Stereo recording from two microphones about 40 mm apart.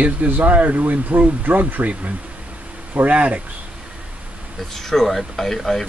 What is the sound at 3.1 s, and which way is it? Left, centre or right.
Speech, right.